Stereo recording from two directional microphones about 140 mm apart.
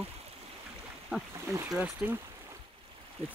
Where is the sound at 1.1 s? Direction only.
5° right (ahead or behind).